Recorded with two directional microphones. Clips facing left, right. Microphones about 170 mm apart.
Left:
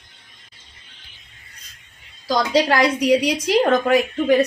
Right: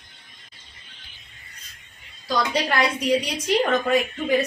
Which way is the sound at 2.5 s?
90° left.